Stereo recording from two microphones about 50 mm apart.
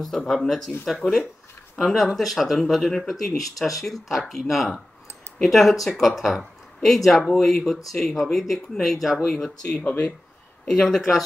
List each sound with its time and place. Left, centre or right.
0.3 s speech: centre
9.3 s speech: centre